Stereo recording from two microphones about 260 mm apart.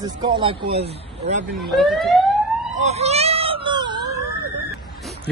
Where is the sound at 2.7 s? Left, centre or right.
Right.